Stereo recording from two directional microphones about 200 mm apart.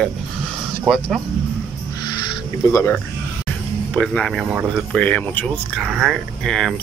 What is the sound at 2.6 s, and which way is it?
Speech, 15° left (ahead or behind).